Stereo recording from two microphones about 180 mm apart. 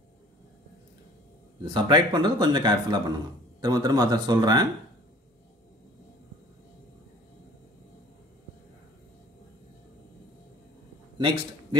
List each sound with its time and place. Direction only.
1.7 s speech: 25° right (ahead or behind)
11.1 s a man's voice: 25° right (ahead or behind)